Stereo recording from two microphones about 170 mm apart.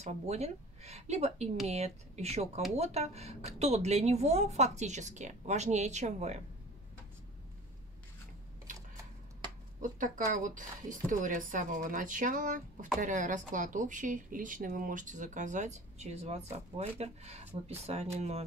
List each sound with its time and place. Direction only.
0.0 s speech: 40° right (ahead or behind)
9.8 s a woman's voice: 50° right (ahead or behind)